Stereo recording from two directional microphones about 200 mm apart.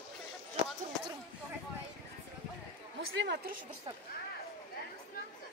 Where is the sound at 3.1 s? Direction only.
60° right (ahead or behind).